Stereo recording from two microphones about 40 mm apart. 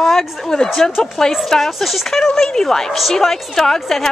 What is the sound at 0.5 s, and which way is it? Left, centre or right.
Speech, centre.